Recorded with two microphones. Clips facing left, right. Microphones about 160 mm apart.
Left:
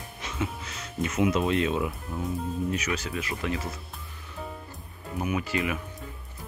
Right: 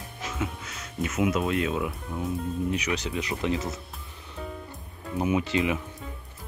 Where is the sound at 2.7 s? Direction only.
15° right (ahead or behind).